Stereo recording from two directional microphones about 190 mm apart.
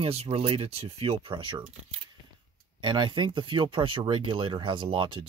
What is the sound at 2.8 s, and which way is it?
Speech, 25° right (ahead or behind).